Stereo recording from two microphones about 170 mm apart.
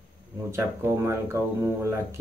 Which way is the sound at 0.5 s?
15° right (ahead or behind).